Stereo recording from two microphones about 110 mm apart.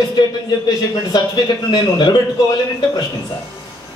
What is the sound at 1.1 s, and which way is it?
A man's voice, 40° left (ahead or behind).